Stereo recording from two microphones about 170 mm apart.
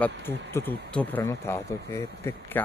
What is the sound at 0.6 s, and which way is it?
Speech, 10° left (ahead or behind).